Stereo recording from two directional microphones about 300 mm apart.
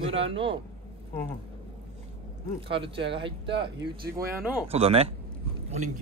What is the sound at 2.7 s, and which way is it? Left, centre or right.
Speech, centre.